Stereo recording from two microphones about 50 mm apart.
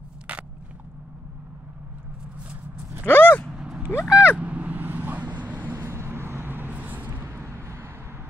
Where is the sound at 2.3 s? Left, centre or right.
Right.